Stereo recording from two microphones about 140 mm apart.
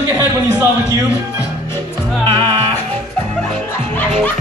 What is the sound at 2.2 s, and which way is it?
Music, 35° right (ahead or behind).